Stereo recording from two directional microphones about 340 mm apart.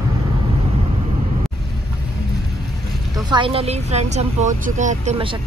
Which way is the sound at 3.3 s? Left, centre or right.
Centre.